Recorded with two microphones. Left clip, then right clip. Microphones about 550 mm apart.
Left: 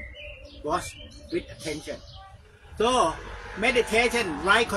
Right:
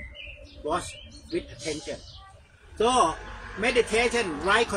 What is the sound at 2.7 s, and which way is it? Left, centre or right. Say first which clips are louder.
A man's voice: even; left.